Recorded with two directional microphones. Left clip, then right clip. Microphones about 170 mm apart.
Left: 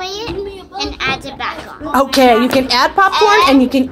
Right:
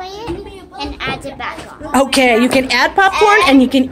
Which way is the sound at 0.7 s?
5° left (ahead or behind).